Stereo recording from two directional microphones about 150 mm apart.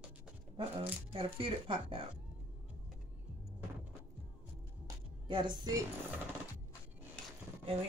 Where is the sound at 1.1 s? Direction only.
35° right (ahead or behind).